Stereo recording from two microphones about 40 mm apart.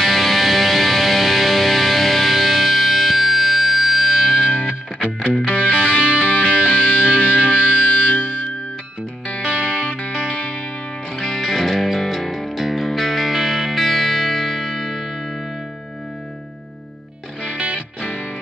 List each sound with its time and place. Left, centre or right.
0.0 s music: centre
5.5 s music: left
9.3 s music: left
11.1 s music: centre